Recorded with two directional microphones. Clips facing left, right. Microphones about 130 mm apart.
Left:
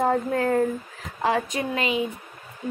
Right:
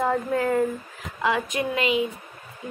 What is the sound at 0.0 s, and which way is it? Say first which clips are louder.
A woman's voice: left 1 dB; 40° left (ahead or behind).